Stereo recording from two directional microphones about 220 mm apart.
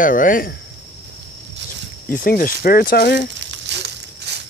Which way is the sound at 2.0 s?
40° left (ahead or behind).